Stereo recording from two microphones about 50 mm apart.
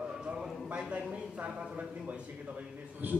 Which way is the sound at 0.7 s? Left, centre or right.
Right.